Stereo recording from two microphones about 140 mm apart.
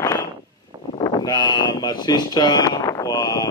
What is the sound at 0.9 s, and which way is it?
Speech, 30° left (ahead or behind).